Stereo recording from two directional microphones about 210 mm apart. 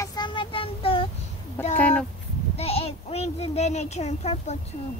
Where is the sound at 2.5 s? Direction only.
30° left (ahead or behind).